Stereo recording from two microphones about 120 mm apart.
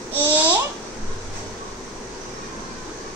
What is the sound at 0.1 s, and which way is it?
Babbling, 15° right (ahead or behind).